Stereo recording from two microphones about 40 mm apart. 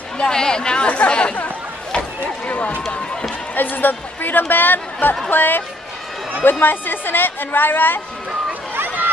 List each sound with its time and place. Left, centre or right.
0.3 s speech: centre
0.8 s speech: left
2.0 s a sound: left
3.5 s a woman's voice: left
6.6 s a woman's voice: left
8.7 s a sound: right